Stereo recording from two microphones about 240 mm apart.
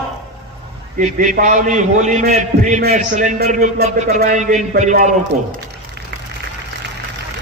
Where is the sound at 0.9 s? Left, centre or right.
Right.